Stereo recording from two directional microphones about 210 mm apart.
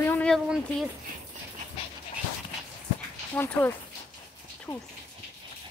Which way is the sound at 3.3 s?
10° left (ahead or behind).